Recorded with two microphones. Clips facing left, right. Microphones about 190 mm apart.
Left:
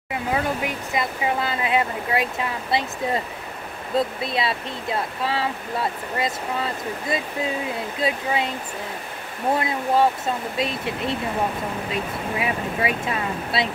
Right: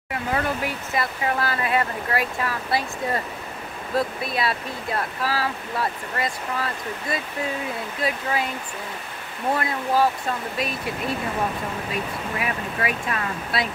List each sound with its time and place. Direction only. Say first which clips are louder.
0.1 s speech: left 1 dB; 15° left (ahead or behind)
9.6 s speech: left 1 dB; 20° left (ahead or behind)